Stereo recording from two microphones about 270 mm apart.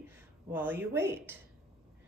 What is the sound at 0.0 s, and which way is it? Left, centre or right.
Speech, centre.